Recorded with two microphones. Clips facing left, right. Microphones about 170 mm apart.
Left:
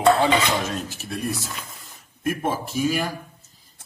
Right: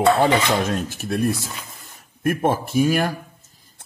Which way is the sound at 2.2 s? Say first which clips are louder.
Right 5 dB; 55° right (ahead or behind).